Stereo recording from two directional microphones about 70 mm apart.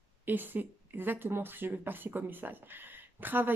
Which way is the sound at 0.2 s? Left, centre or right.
Right.